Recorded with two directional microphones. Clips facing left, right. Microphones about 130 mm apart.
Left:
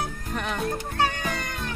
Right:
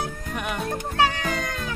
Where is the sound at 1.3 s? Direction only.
90° right.